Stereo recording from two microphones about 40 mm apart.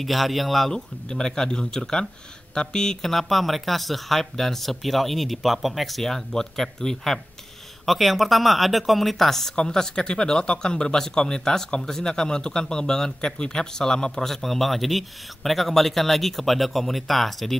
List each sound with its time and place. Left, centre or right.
0.0 s speech: centre
7.8 s speech: centre